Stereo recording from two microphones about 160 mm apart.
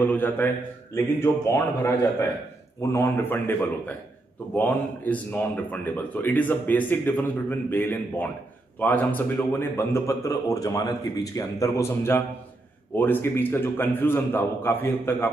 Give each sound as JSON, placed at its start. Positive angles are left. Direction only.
{"t": 0.0, "sound": "speech", "side_deg": 10}